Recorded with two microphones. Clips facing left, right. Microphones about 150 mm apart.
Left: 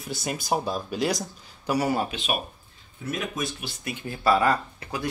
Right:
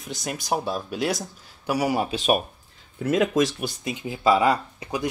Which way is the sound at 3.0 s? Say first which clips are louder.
Right 10 dB; 90° right.